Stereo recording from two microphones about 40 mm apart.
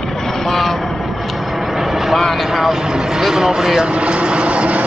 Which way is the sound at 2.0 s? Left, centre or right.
Centre.